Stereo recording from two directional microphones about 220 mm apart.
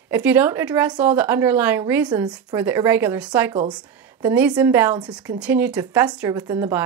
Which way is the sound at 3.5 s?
20° right (ahead or behind).